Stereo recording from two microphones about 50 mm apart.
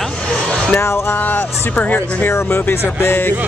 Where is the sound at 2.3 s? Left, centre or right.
Left.